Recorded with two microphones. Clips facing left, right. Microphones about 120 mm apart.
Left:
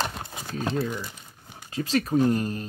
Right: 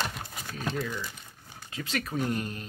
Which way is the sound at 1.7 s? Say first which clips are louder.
Left 9 dB; 35° left (ahead or behind).